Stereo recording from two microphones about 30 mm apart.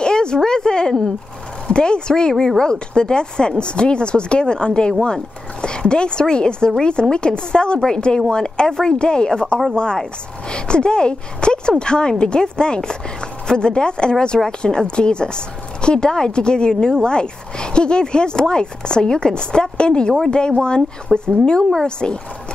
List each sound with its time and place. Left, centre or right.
0.0 s a sound: left
1.7 s speech: left
2.3 s speech: centre
2.6 s speech: left
8.9 s speech: left